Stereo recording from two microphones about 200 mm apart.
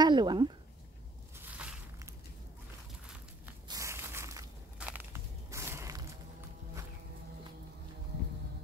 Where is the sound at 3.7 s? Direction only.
15° right (ahead or behind).